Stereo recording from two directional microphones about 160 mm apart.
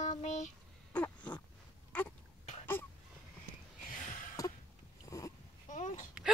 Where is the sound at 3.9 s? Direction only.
55° left (ahead or behind).